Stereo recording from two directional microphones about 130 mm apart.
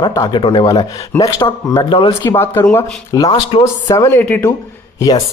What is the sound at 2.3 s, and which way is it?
Speech, 15° left (ahead or behind).